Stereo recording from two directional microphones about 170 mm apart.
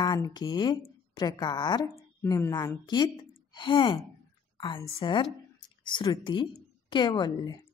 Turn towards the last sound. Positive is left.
turn(degrees=25)  # may be behind; listen again after turning